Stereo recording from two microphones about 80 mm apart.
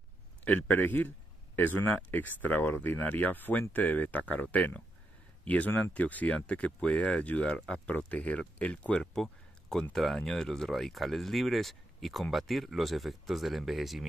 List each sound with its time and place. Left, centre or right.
0.5 s a man's voice: left
9.0 s a sound: centre
9.9 s speech: centre